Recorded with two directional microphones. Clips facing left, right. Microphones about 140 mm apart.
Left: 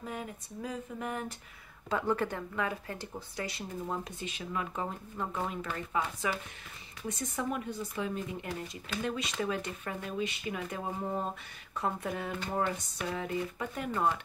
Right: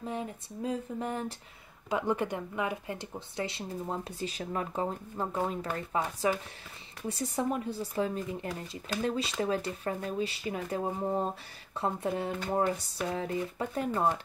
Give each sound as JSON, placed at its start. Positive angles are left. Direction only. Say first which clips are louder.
{"t": 0.0, "sound": "speech", "louder": "right 4 dB", "side_deg": -25}
{"t": 1.9, "sound": "speech", "louder": "right 1 dB", "side_deg": -15}